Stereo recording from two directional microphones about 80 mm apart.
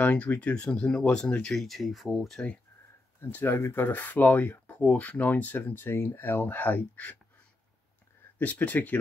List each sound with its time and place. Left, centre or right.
0.0 s speech: centre
3.2 s speech: left
8.4 s speech: left